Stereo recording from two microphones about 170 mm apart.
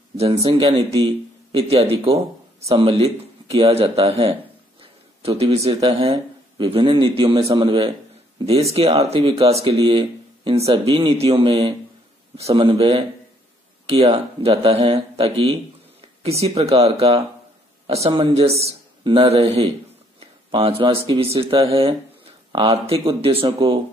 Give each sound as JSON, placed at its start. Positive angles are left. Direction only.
{"t": 0.5, "sound": "a man's voice", "side_deg": -30}
{"t": 20.2, "sound": "a sound", "side_deg": -35}
{"t": 21.4, "sound": "speech", "side_deg": -30}